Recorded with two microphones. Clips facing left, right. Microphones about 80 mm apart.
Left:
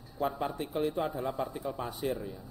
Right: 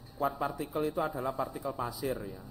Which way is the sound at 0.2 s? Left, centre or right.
Centre.